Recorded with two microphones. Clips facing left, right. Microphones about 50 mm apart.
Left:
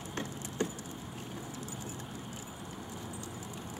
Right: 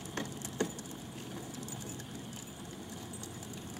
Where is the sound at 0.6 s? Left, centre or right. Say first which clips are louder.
Left 1 dB; left.